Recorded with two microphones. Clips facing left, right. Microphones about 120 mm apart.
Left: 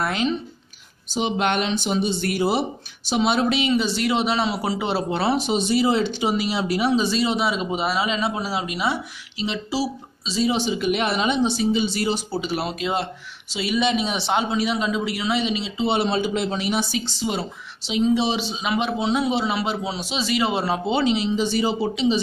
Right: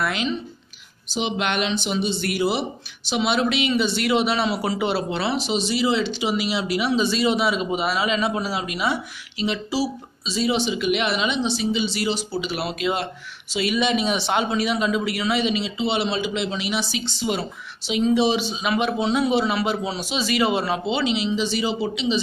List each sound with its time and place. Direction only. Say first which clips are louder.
0.0 s speech: left 1 dB; 40° left (ahead or behind)
5.1 s speech: left 2 dB; 45° left (ahead or behind); by 9.8 s 25° left (ahead or behind)
10.3 s speech: even; 40° left (ahead or behind)
12.5 s speech: even; 30° left (ahead or behind)
15.8 s speech: left 4 dB; 40° left (ahead or behind)
17.3 s speech: right 4 dB; 30° left (ahead or behind)
20.8 s speech: left 2 dB; 45° left (ahead or behind)